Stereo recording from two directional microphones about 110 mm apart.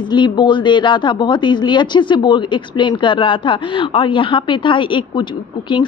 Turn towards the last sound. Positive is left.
turn(degrees=45)  # may be behind; listen again after turning